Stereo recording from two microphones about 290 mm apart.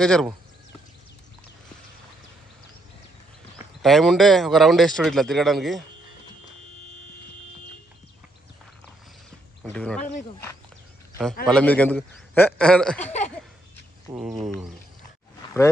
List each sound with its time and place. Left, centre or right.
0.0 s speech: centre
3.8 s speech: centre
9.6 s speech: centre
13.0 s a sound: left
14.1 s speech: centre